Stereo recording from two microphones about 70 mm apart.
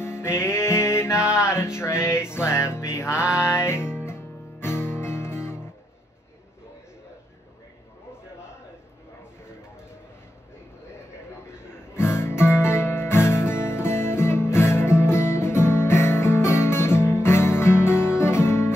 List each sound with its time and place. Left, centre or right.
0.0 s music: left
11.4 s guitar: left